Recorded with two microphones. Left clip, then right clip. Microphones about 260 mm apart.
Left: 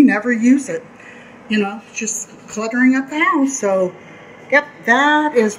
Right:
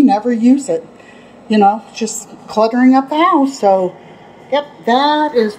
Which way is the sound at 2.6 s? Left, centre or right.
Centre.